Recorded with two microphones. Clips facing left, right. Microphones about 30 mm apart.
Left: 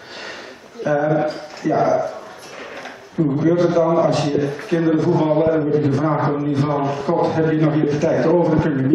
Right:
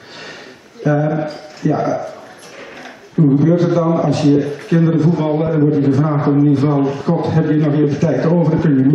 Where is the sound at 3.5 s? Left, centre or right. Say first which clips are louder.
Right 1 dB; centre.